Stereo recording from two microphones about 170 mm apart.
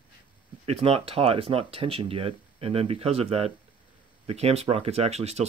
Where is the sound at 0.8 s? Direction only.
35° right (ahead or behind).